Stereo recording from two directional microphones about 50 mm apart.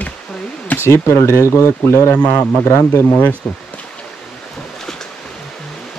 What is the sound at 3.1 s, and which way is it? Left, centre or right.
Speech, left.